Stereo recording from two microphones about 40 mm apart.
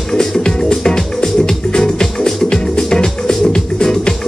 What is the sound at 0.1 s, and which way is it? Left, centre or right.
Music, centre.